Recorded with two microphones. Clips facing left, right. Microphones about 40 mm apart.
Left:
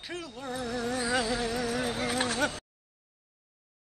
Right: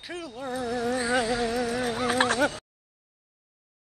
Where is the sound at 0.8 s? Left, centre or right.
Right.